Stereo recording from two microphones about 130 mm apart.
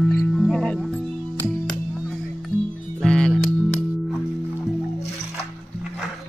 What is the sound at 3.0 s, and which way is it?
Music, 5° left (ahead or behind).